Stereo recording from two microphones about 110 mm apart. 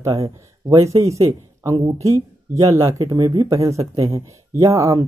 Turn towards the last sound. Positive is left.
turn(degrees=-30)  # may be behind; listen again after turning